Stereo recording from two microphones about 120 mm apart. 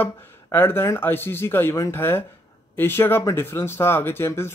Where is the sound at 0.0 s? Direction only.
20° left (ahead or behind).